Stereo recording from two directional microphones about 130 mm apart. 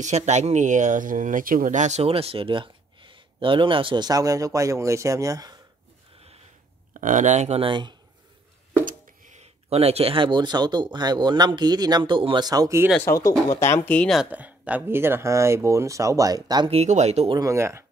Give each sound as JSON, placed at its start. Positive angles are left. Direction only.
{"t": 0.0, "sound": "speech", "side_deg": -60}
{"t": 6.9, "sound": "speech", "side_deg": -75}
{"t": 7.6, "sound": "speech", "side_deg": -35}
{"t": 8.8, "sound": "a sound", "side_deg": -90}
{"t": 9.4, "sound": "speech", "side_deg": -50}
{"t": 12.4, "sound": "speech", "side_deg": -25}
{"t": 12.9, "sound": "speech", "side_deg": 20}
{"t": 14.3, "sound": "speech", "side_deg": -10}
{"t": 16.7, "sound": "speech", "side_deg": -60}
{"t": 17.3, "sound": "speech", "side_deg": -25}